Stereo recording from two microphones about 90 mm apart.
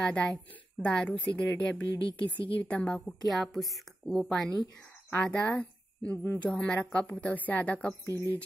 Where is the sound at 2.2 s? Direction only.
65° left (ahead or behind).